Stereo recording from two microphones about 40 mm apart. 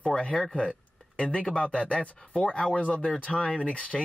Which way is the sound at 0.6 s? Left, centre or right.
Left.